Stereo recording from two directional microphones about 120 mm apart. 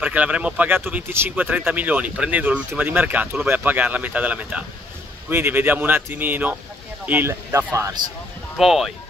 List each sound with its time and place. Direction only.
0.0 s speech: 10° right (ahead or behind)
8.5 s speech: centre (ahead or behind)